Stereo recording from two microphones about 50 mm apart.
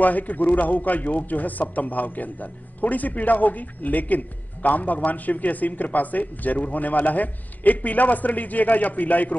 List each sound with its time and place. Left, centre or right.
0.0 s a man's voice: left